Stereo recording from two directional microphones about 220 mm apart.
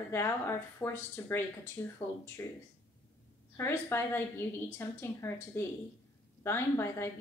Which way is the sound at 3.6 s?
10° left (ahead or behind).